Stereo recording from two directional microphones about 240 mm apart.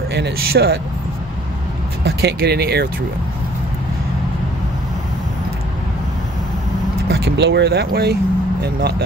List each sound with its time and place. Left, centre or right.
0.1 s speech: right
2.0 s speech: right
7.1 s speech: right